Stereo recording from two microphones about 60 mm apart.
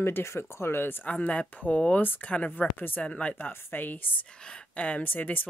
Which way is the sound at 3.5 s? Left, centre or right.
Left.